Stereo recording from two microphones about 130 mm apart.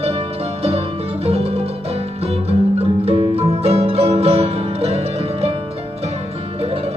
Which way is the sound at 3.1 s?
50° right (ahead or behind).